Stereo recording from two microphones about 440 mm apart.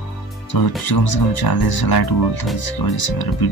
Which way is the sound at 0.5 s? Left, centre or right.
Left.